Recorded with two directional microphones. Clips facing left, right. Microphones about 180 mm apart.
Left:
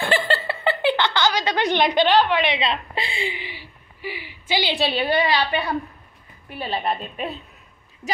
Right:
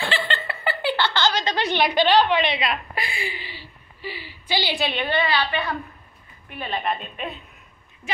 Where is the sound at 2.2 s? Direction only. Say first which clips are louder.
Even; 10° left (ahead or behind).